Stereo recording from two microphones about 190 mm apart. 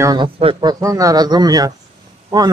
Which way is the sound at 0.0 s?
20° right (ahead or behind).